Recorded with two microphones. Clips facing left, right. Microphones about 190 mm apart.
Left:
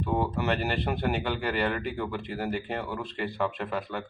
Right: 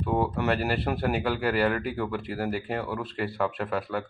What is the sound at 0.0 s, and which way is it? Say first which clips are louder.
Speech: right 2 dB; 5° right (ahead or behind).